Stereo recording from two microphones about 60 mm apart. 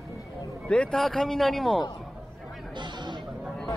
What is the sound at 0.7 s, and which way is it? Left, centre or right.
Speech, centre.